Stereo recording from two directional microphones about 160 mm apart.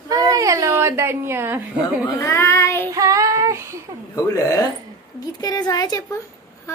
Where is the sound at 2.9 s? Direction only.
20° right (ahead or behind).